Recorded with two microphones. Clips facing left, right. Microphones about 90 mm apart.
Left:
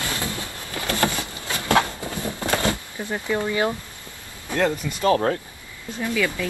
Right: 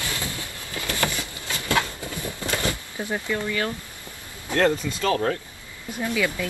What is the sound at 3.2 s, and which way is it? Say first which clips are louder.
Speech: left 6 dB; 25° left (ahead or behind).